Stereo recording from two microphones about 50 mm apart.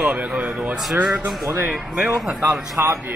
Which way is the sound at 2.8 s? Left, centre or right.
Right.